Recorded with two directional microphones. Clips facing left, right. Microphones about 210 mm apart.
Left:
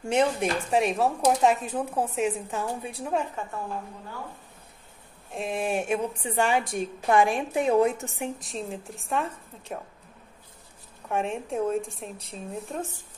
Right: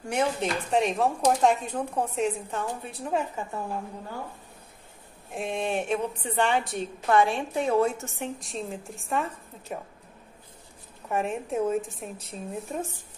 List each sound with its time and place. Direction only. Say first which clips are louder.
0.1 s dishes: left 3 dB; 20° left (ahead or behind)
0.7 s speech: even; 5° left (ahead or behind)
3.1 s speech: even; centre (ahead or behind)
5.3 s a woman's voice: left 1 dB; centre (ahead or behind); by 8.3 s 15° left (ahead or behind)
8.4 s speech: even; centre (ahead or behind)
11.1 s speech: even; centre (ahead or behind)